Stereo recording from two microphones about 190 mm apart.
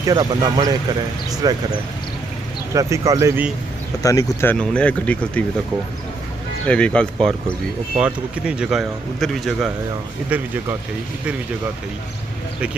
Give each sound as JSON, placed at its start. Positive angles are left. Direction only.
{"t": 0.0, "sound": "speech", "side_deg": -20}
{"t": 2.7, "sound": "speech", "side_deg": -15}
{"t": 4.0, "sound": "speech", "side_deg": 20}
{"t": 6.7, "sound": "speech", "side_deg": 5}